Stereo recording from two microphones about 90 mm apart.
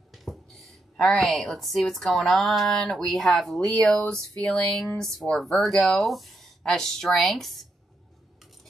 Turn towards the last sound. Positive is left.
turn(degrees=0)  # may be behind; listen again after turning